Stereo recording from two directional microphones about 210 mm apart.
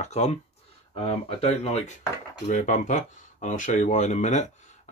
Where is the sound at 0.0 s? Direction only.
30° left (ahead or behind).